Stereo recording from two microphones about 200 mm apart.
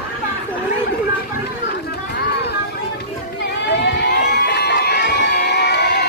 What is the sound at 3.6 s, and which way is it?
Crowd, 55° left (ahead or behind).